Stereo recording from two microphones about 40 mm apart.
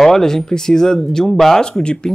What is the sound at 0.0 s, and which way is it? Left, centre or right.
Speech, centre.